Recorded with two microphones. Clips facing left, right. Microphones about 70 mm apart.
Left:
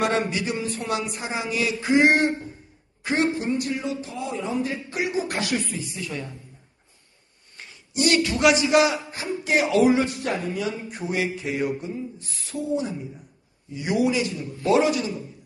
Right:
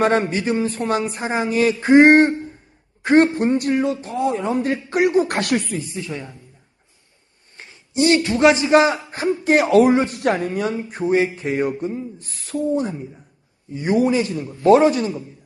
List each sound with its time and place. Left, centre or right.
0.0 s a man's voice: right
5.9 s a woman's voice: right
7.5 s a man's voice: right